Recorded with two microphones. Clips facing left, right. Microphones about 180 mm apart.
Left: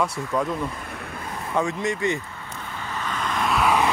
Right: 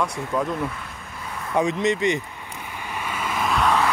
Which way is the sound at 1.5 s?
20° right (ahead or behind).